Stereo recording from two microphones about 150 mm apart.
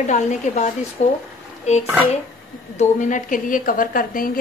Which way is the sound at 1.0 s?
50° left (ahead or behind).